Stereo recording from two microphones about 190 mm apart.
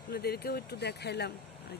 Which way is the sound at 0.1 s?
55° left (ahead or behind).